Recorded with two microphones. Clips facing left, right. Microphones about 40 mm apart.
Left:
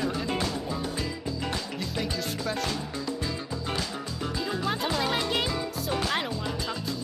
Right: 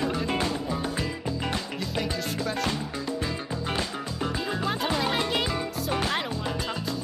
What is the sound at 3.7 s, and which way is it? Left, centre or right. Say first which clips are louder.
Music: right 2 dB; right.